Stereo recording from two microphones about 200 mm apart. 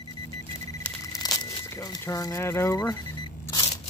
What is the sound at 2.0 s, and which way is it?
Speech, 15° left (ahead or behind).